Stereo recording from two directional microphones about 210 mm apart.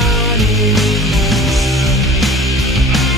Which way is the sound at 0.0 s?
Centre (ahead or behind).